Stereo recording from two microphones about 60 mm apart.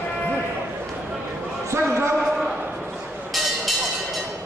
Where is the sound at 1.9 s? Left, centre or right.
Right.